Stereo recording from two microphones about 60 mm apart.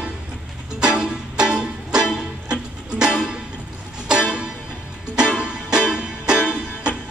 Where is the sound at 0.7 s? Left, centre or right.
Centre.